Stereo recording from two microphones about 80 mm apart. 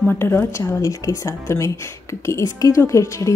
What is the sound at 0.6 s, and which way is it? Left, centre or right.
A woman's voice, left.